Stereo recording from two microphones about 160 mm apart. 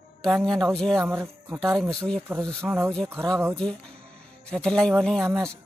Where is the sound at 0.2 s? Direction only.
Centre (ahead or behind).